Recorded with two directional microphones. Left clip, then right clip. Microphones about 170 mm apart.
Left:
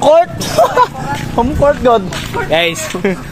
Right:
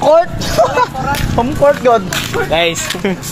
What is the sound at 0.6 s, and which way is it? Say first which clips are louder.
Vehicle: left 3 dB; 55° left (ahead or behind).